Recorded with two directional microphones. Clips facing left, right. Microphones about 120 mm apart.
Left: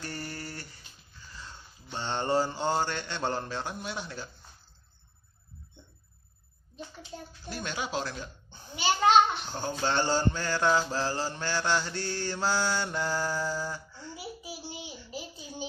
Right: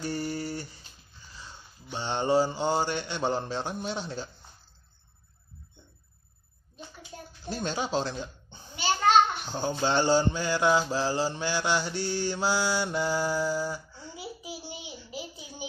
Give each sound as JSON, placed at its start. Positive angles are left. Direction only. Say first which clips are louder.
{"t": 0.0, "sound": "a sound", "louder": "right 7 dB", "side_deg": -15}
{"t": 1.3, "sound": "mantra", "louder": "even", "side_deg": -15}
{"t": 7.4, "sound": "speech", "louder": "right 5 dB", "side_deg": -30}
{"t": 9.5, "sound": "mantra", "louder": "right 3 dB", "side_deg": -20}